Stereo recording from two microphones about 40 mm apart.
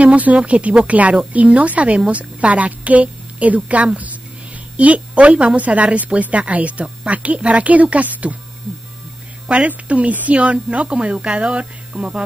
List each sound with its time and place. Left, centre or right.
0.0 s speech: right
9.7 s speech: right